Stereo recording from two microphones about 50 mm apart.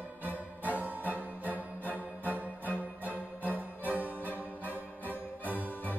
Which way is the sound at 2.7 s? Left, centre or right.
Right.